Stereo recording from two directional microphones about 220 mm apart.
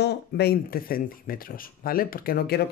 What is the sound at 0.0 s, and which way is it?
Speech, 45° left (ahead or behind).